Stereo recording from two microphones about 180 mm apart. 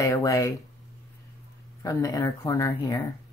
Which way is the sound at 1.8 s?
20° left (ahead or behind).